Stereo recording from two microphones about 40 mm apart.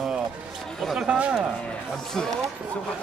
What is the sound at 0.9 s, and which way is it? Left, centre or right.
Speech, right.